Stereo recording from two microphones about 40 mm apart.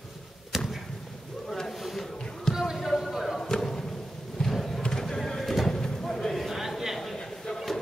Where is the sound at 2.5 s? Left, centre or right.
Centre.